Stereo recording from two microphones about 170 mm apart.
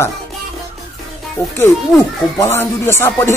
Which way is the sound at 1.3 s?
15° left (ahead or behind).